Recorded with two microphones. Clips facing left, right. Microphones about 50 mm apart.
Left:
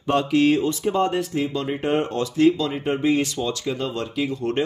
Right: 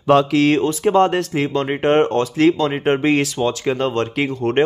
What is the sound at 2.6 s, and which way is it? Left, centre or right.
Speech, right.